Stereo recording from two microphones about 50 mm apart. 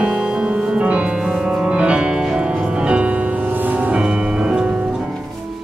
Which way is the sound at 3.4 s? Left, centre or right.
Right.